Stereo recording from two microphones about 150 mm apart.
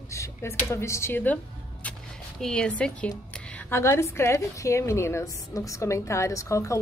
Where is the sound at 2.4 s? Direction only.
5° left (ahead or behind).